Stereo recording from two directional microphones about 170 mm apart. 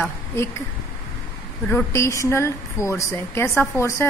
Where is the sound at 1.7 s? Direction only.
15° left (ahead or behind).